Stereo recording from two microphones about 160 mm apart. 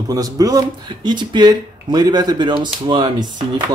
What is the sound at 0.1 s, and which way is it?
Speech, 20° right (ahead or behind).